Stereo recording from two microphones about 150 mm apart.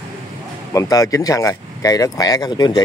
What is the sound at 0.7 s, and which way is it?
Speech, 25° left (ahead or behind).